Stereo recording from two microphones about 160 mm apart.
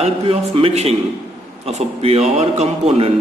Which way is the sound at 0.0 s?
35° right (ahead or behind).